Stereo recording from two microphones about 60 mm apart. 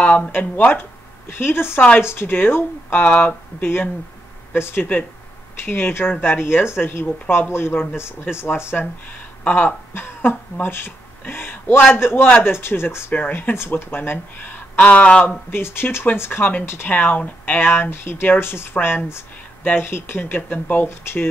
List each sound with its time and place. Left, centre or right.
0.3 s speech: left
1.4 s speech: left
3.1 s speech: left
4.6 s speech: left
9.4 s speech: left
9.9 s speech: left
13.1 s speech: left
14.1 s speech: left
15.5 s speech: left